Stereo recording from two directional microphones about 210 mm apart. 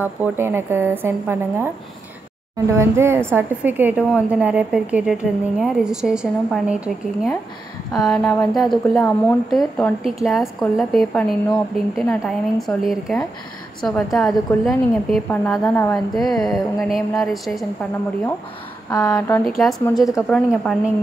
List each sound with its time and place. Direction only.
0.0 s a woman's voice: 10° right (ahead or behind)
2.7 s a woman's voice: 10° right (ahead or behind)
8.2 s speech: 10° left (ahead or behind)
8.5 s a woman's voice: centre (ahead or behind)
18.9 s speech: 15° left (ahead or behind)
20.2 s a woman's voice: 5° left (ahead or behind)